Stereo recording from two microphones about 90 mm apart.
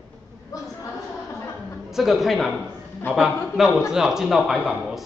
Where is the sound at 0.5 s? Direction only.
45° left (ahead or behind).